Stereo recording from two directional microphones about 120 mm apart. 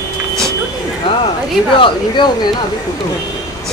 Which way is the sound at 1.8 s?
40° left (ahead or behind).